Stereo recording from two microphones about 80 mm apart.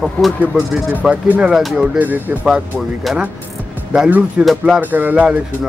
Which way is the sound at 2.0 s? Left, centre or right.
Right.